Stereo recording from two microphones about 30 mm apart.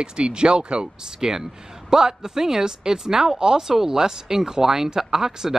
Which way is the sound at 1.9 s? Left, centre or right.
Centre.